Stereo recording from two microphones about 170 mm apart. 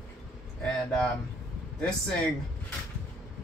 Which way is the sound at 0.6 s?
5° left (ahead or behind).